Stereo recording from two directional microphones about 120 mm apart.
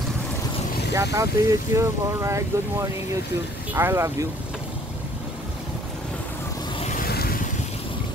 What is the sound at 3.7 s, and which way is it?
Speech, 25° right (ahead or behind).